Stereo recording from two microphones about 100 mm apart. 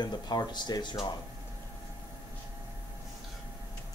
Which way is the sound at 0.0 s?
45° left (ahead or behind).